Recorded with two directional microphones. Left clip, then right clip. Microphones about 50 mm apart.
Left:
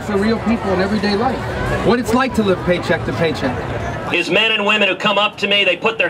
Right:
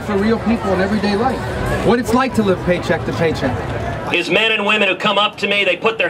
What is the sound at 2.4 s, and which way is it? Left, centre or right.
Speech, centre.